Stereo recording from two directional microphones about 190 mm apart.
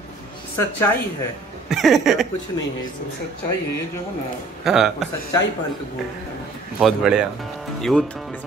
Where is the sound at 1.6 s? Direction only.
Centre (ahead or behind).